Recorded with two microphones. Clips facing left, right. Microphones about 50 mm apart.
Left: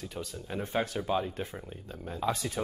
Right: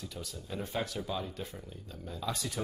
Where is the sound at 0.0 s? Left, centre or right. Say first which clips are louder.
Left 4 dB; left.